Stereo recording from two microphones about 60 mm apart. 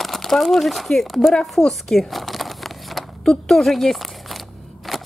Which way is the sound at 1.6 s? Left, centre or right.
Centre.